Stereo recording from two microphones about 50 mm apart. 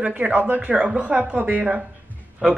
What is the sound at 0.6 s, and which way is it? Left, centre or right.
A woman's voice, right.